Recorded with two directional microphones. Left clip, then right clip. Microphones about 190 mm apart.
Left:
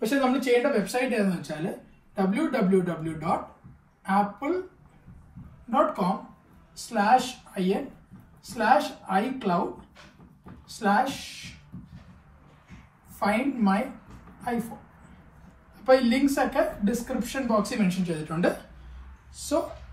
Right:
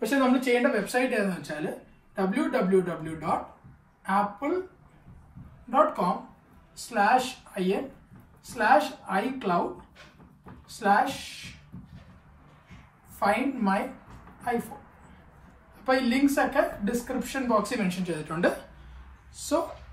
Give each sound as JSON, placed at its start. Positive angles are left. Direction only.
{"t": 0.2, "sound": "a woman's voice", "side_deg": 0}
{"t": 5.7, "sound": "a woman's voice", "side_deg": 0}
{"t": 10.7, "sound": "a woman's voice", "side_deg": 0}
{"t": 13.1, "sound": "a woman's voice", "side_deg": 0}
{"t": 15.8, "sound": "a woman's voice", "side_deg": 0}